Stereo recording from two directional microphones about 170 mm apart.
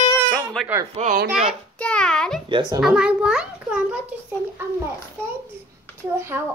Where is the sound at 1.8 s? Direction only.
5° left (ahead or behind).